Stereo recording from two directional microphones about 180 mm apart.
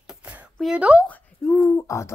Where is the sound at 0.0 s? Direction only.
5° right (ahead or behind).